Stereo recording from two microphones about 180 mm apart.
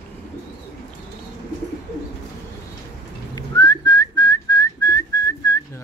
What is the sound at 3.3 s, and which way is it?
Whistling, 20° left (ahead or behind).